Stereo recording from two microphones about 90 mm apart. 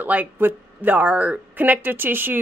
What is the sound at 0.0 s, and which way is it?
Speech, 20° right (ahead or behind).